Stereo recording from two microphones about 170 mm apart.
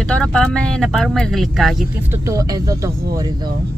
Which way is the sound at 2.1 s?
20° right (ahead or behind).